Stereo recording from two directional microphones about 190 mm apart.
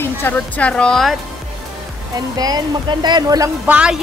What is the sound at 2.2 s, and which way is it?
Speech, 20° right (ahead or behind).